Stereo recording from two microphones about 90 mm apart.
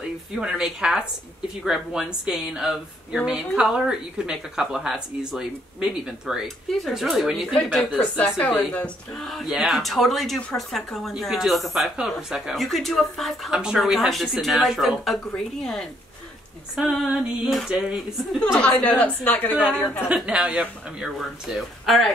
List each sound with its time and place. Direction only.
0.4 s speech: 5° right (ahead or behind)
8.0 s a woman's voice: 15° left (ahead or behind)
9.1 s speech: 5° left (ahead or behind)
17.0 s speech: 5° right (ahead or behind)
18.5 s a woman's voice: 15° left (ahead or behind)
20.2 s speech: 10° right (ahead or behind)
21.2 s speech: centre (ahead or behind)